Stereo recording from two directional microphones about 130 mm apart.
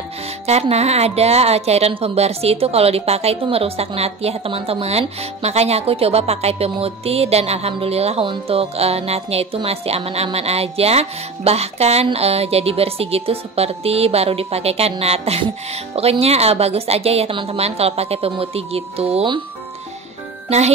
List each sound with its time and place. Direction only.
0.5 s speech: 55° right (ahead or behind)
20.4 s music: 60° right (ahead or behind)